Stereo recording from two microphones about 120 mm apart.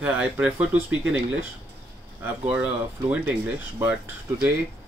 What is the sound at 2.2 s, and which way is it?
Speech, 15° right (ahead or behind).